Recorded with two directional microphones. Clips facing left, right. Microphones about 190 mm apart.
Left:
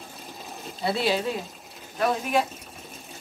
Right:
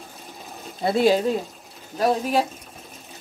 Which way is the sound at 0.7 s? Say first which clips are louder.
Right 6 dB; 50° right (ahead or behind).